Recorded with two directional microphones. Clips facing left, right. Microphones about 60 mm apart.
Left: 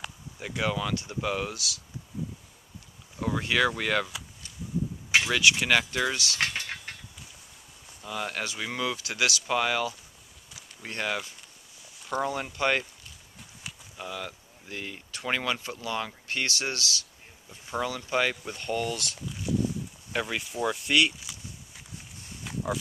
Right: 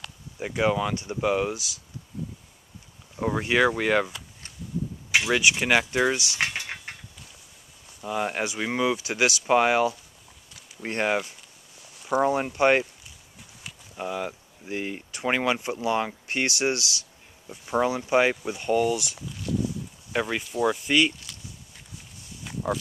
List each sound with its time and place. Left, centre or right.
0.4 s speech: centre
3.2 s speech: centre
5.1 s speech: centre
8.0 s speech: centre
13.9 s speech: right; by 21.1 s centre
21.2 s walk: centre